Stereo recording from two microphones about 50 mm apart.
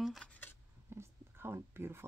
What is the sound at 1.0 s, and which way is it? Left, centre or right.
Speech, right.